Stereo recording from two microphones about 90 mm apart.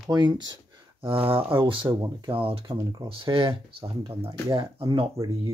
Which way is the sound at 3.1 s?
75° right (ahead or behind).